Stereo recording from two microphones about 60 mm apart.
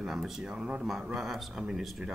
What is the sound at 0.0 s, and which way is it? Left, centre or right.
Speech, centre.